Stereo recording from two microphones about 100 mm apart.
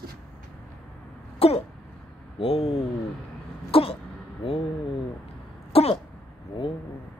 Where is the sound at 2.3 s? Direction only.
70° left (ahead or behind).